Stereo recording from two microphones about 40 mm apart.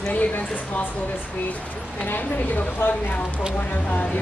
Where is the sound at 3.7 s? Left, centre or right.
Left.